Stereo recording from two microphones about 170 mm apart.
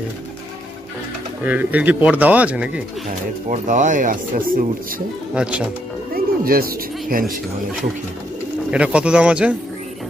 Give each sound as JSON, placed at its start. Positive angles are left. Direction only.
{"t": 1.4, "sound": "speech", "side_deg": -10}
{"t": 3.4, "sound": "speech", "side_deg": -50}
{"t": 5.3, "sound": "speech", "side_deg": -5}
{"t": 6.1, "sound": "speech", "side_deg": -60}
{"t": 8.6, "sound": "speech", "side_deg": -5}